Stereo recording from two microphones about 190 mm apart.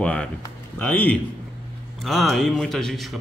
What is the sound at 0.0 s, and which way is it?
A man's voice, 5° left (ahead or behind).